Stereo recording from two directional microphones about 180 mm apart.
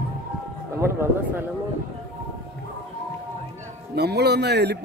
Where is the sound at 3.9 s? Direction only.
65° right (ahead or behind).